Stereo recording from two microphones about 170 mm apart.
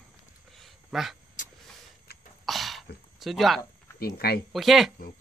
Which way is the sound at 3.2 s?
Centre (ahead or behind).